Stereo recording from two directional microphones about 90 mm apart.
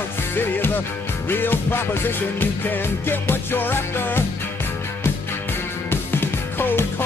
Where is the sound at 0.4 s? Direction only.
25° left (ahead or behind).